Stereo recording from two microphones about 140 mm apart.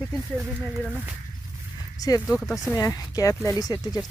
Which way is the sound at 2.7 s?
25° left (ahead or behind).